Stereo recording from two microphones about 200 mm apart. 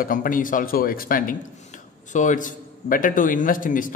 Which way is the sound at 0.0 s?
45° left (ahead or behind).